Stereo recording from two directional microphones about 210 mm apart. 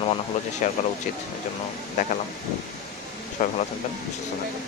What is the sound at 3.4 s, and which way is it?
Speech, 40° left (ahead or behind).